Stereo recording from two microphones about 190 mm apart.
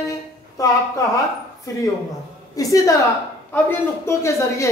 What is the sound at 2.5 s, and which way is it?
A woman's voice, 20° left (ahead or behind).